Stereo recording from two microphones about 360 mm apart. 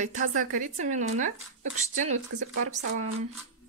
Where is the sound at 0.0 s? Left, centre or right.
Right.